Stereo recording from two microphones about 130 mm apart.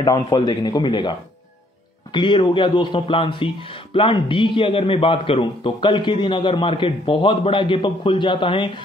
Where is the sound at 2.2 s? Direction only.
40° left (ahead or behind).